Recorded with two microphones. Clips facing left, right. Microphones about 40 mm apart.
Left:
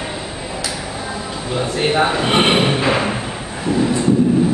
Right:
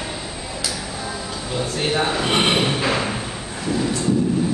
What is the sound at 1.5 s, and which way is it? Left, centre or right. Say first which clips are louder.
Thump: left 5 dB; centre.